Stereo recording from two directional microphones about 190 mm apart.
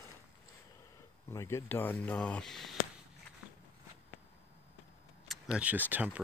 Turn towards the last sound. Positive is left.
turn(degrees=-10)  # may be behind; listen again after turning